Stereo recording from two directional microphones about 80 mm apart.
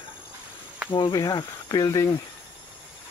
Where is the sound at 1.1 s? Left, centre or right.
Left.